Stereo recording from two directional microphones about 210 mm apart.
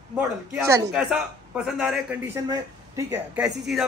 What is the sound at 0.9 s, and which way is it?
Speech, 5° right (ahead or behind).